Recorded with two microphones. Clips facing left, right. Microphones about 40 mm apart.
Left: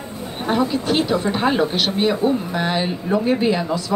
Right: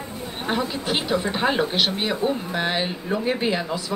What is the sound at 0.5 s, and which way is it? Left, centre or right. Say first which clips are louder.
Speech: left 6 dB; centre.